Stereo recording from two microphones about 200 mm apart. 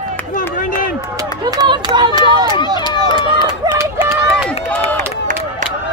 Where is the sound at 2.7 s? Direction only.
20° left (ahead or behind).